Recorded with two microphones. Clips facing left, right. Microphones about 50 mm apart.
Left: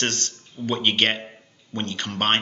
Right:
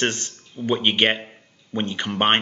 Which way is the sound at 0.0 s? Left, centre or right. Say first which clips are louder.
Right 3 dB; centre.